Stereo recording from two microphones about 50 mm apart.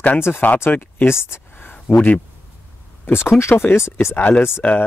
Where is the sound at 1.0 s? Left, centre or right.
Left.